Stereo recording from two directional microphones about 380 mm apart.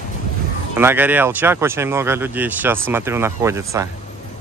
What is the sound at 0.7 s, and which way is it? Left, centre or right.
Speech, centre.